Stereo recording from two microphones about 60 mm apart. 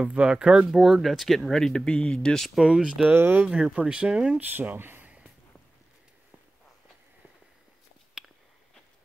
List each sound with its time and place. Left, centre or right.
0.0 s speech: centre
2.6 s speech: centre
3.2 s speech: right
3.4 s speech: centre
4.4 s speech: right
5.0 s a sound: centre
8.2 s a sound: centre